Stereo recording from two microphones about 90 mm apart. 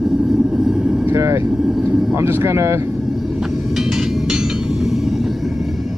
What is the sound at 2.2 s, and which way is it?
Speech, 30° right (ahead or behind).